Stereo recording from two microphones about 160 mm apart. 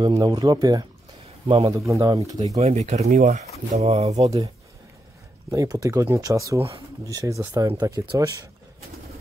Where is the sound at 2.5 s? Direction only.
45° right (ahead or behind).